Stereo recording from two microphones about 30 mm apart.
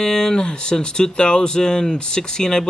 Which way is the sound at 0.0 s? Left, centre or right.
Left.